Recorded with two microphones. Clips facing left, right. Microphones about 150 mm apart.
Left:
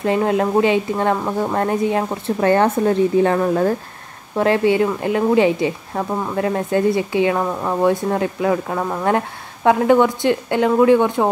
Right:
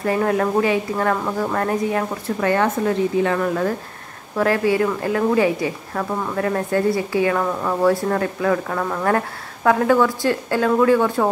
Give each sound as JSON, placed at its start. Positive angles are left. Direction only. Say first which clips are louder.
{"t": 0.0, "sound": "a woman's voice", "louder": "left 2 dB", "side_deg": 20}